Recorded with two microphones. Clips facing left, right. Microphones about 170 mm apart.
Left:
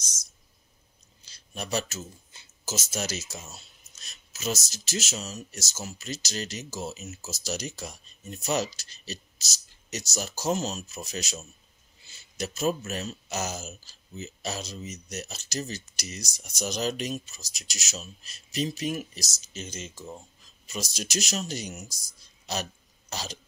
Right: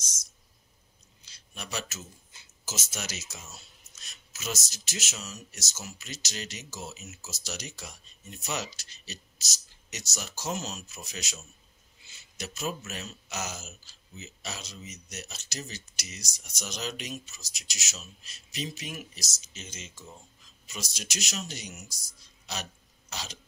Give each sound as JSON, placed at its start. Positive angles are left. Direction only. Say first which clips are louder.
{"t": 1.2, "sound": "speech", "louder": "left 7 dB", "side_deg": 40}
{"t": 22.5, "sound": "burping", "louder": "left 6 dB", "side_deg": 40}